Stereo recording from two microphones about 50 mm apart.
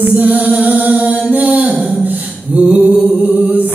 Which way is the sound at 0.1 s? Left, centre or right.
Right.